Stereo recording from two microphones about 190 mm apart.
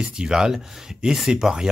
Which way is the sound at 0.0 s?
5° right (ahead or behind).